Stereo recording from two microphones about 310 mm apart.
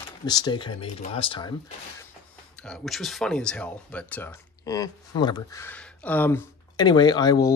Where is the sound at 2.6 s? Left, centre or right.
Centre.